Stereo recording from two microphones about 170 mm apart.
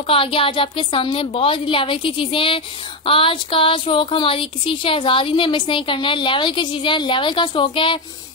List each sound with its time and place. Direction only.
0.0 s speech: 35° left (ahead or behind)